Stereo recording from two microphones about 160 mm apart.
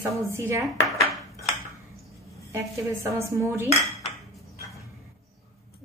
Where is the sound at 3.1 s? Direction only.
20° right (ahead or behind).